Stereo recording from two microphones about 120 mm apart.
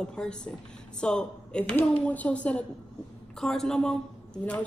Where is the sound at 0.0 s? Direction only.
5° left (ahead or behind).